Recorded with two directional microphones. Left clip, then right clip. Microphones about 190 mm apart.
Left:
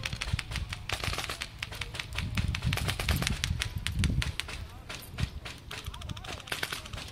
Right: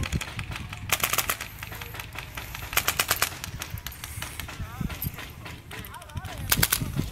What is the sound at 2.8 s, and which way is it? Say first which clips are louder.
Bird: right 11 dB; 40° right (ahead or behind).